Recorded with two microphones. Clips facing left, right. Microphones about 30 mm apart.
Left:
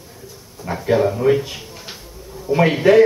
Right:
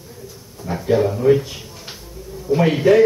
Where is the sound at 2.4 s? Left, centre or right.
Left.